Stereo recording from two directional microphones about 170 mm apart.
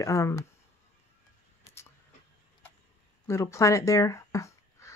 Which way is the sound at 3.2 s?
15° left (ahead or behind).